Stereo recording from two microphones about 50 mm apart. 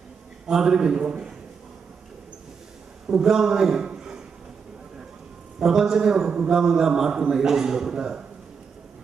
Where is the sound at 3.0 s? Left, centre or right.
Centre.